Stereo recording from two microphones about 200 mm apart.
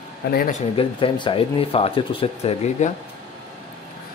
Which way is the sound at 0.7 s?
25° left (ahead or behind).